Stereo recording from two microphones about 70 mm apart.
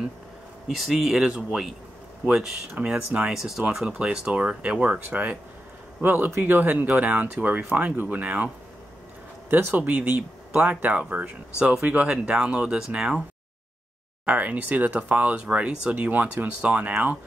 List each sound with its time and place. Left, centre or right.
0.7 s speech: centre; by 8.5 s right
9.5 s speech: right; by 13.2 s centre
14.2 s speech: centre
15.9 s speech: right